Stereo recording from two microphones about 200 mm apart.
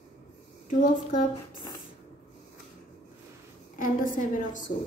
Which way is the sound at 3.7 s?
40° left (ahead or behind).